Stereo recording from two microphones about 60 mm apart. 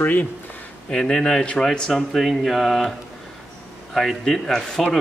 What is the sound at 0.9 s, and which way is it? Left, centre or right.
Speech, centre.